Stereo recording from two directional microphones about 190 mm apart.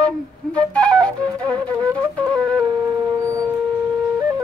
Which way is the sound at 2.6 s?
20° right (ahead or behind).